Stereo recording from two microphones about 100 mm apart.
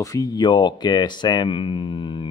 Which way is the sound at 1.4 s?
60° left (ahead or behind).